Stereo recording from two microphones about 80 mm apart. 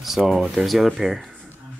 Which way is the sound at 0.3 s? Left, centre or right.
Centre.